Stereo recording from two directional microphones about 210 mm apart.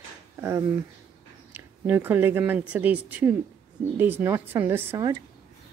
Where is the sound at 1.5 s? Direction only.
10° right (ahead or behind).